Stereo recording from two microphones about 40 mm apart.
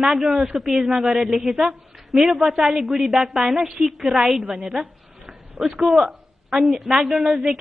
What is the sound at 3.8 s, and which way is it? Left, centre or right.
Speech, right.